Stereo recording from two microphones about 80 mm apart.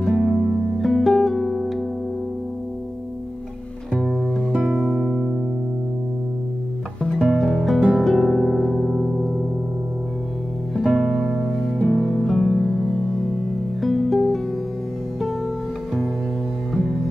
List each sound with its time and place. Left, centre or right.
0.0 s music: centre
4.0 s music: centre
4.5 s music: centre
7.2 s music: centre
8.0 s harp: centre
10.7 s music: centre
13.7 s music: centre